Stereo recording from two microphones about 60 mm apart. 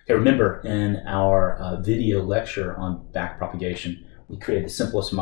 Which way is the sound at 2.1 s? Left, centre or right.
Centre.